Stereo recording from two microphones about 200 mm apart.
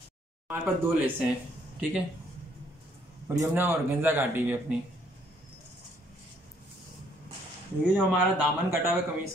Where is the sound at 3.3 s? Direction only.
10° right (ahead or behind).